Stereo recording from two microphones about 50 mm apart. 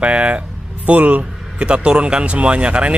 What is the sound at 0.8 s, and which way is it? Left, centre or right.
A man's voice, right.